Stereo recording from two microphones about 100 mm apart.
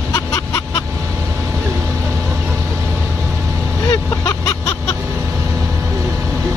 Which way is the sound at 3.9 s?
35° left (ahead or behind).